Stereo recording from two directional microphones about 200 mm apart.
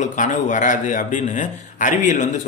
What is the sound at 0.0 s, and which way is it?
A man's voice, 40° left (ahead or behind).